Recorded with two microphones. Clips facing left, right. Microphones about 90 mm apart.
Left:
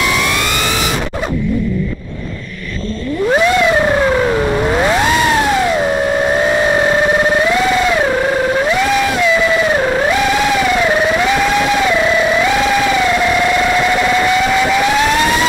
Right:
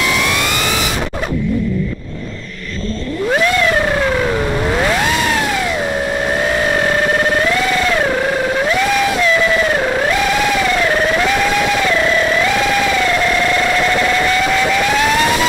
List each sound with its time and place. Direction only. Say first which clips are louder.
3.3 s vehicle: left 3 dB; 15° left (ahead or behind)
6.7 s music: left 3 dB; 15° left (ahead or behind)
9.8 s theremin: left 2 dB; 5° left (ahead or behind)
10.8 s music: left 2 dB; 10° left (ahead or behind)
13.2 s vehicle: left 2 dB; 10° left (ahead or behind)